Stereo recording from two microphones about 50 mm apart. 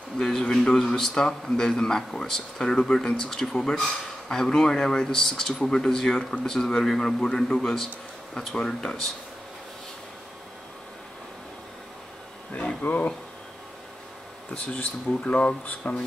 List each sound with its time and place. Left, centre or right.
0.2 s a man's voice: centre
12.8 s speech: left
14.5 s speech: left